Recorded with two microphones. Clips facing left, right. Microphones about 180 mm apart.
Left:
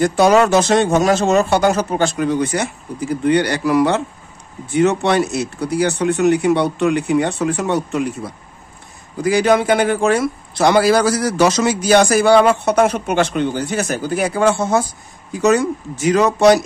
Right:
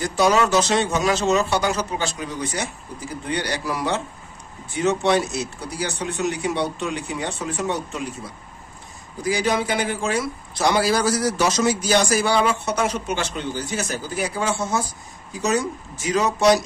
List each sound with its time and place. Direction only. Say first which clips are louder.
0.0 s a man's voice: left 6 dB; 55° left (ahead or behind)
9.2 s a man's voice: left 8 dB; 60° left (ahead or behind)